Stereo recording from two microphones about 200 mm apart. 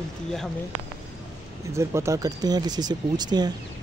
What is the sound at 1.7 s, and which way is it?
Speech, 15° right (ahead or behind).